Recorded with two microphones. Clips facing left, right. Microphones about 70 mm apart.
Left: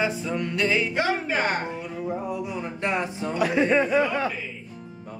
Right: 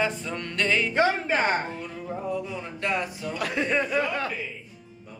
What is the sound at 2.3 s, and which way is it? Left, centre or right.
Speech, centre.